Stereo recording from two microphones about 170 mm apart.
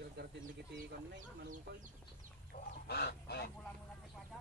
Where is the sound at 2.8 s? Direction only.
70° left (ahead or behind).